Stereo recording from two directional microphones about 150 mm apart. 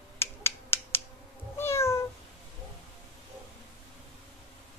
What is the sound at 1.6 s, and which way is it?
Cat, 15° left (ahead or behind).